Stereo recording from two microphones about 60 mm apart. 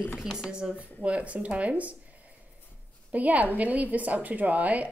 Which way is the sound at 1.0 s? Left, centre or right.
Right.